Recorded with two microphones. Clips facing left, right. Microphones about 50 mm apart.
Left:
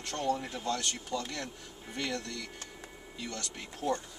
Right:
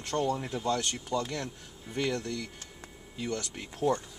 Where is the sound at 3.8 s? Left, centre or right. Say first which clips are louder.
Right 4 dB; centre.